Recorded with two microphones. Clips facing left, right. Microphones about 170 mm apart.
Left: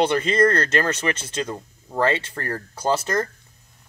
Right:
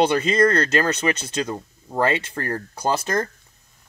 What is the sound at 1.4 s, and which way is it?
Speech, 15° right (ahead or behind).